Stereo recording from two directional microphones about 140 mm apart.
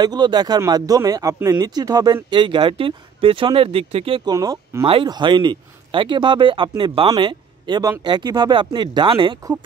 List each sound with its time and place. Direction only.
0.0 s speech: 30° right (ahead or behind)
4.3 s speech: 25° right (ahead or behind)